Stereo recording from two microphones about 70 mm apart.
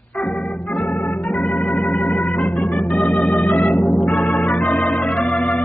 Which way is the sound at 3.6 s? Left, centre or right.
Left.